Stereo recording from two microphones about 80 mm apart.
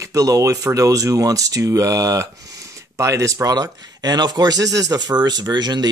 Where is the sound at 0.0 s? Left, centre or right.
Right.